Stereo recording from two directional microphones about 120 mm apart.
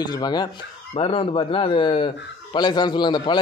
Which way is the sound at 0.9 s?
50° left (ahead or behind).